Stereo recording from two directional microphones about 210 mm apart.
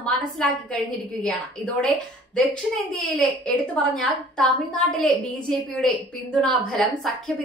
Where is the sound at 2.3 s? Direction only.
Centre (ahead or behind).